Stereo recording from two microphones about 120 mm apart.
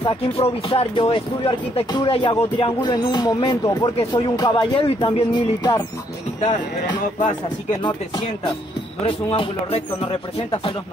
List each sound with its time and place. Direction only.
0.4 s speech: 55° left (ahead or behind)
1.9 s speech: 40° left (ahead or behind)
4.8 s speech: 55° left (ahead or behind)
5.3 s speech: 35° left (ahead or behind)
9.0 s speech: 50° left (ahead or behind)